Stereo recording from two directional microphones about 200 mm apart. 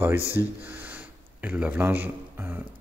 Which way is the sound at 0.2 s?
15° left (ahead or behind).